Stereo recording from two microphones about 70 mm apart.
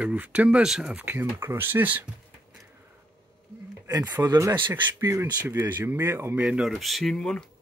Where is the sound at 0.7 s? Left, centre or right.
Centre.